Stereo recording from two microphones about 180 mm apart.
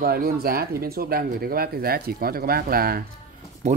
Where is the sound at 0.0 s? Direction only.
55° right (ahead or behind).